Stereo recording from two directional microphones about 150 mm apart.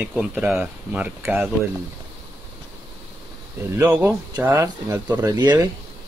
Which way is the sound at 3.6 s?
15° right (ahead or behind).